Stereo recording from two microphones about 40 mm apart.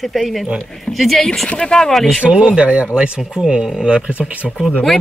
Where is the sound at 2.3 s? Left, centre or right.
Right.